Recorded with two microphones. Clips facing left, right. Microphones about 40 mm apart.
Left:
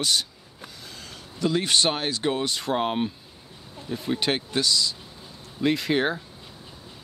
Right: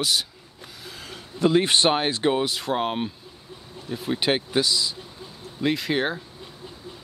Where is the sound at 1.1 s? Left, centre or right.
Right.